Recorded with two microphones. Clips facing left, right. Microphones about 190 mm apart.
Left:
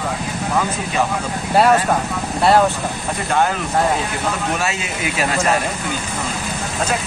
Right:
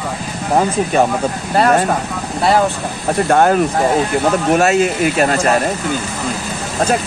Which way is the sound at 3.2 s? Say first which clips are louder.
Right 7 dB; 50° right (ahead or behind).